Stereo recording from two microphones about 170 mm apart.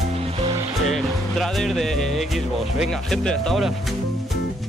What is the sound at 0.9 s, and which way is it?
Speech, centre (ahead or behind).